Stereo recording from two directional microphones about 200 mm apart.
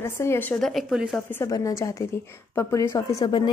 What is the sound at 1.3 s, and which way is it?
A woman's voice, 15° left (ahead or behind).